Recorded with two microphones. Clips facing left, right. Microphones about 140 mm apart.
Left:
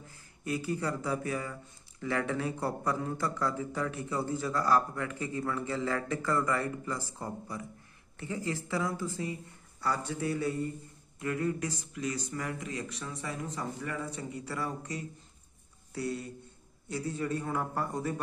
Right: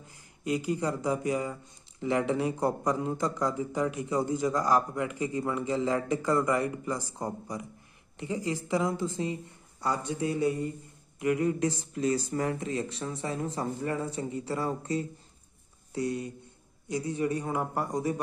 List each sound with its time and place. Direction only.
0.0 s speech: 20° right (ahead or behind)